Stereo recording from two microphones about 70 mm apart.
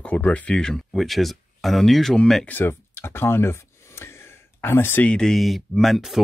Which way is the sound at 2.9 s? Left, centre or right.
Left.